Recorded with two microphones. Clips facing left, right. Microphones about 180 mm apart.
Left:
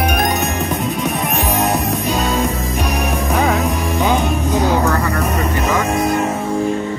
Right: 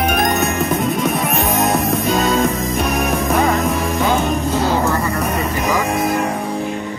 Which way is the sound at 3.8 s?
15° left (ahead or behind).